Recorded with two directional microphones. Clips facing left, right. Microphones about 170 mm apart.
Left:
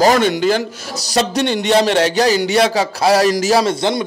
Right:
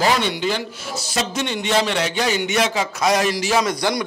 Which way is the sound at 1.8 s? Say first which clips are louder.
Left 8 dB; 65° left (ahead or behind).